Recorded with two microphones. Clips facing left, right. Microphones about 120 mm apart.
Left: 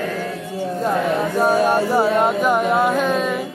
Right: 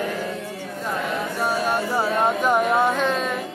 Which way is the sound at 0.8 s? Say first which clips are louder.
Left 6 dB; 40° left (ahead or behind).